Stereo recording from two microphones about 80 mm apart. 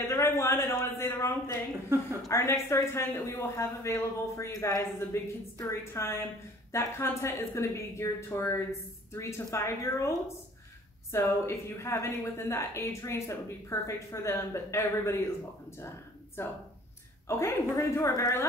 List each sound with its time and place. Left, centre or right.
0.0 s a sound: left
2.2 s a woman's voice: left
16.4 s a woman's voice: left